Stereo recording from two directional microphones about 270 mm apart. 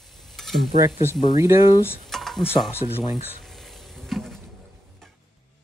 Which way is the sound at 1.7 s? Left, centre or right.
Centre.